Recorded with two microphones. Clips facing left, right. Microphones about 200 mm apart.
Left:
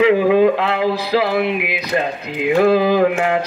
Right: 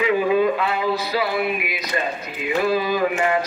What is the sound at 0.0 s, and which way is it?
Speech, 75° left (ahead or behind).